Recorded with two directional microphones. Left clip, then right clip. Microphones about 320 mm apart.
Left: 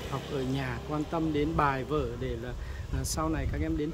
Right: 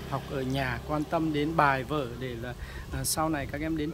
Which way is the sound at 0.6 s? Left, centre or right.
Centre.